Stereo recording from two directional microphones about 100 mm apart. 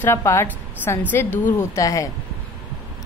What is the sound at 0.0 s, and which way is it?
A woman's voice, 25° left (ahead or behind).